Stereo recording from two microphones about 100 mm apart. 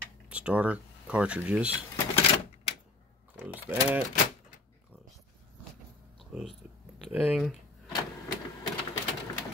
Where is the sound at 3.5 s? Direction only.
20° right (ahead or behind).